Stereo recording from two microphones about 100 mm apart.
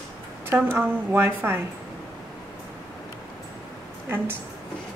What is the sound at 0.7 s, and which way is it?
Speech, 25° right (ahead or behind).